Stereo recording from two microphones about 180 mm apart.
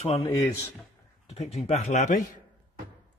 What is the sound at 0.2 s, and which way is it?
Speech, 15° left (ahead or behind).